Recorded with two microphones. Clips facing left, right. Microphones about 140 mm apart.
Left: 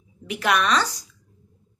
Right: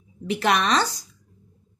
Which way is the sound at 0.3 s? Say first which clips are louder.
Right 1 dB; 30° right (ahead or behind).